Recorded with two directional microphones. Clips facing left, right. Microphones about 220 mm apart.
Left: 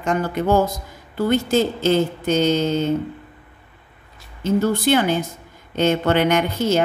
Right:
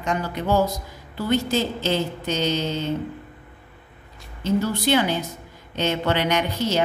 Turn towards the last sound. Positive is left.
turn(degrees=50)  # may be behind; listen again after turning